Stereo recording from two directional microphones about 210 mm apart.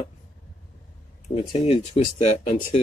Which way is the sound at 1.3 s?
25° left (ahead or behind).